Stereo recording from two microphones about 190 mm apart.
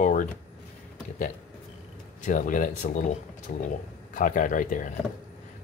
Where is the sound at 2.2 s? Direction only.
45° left (ahead or behind).